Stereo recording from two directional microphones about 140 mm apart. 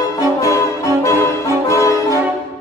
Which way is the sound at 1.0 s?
20° left (ahead or behind).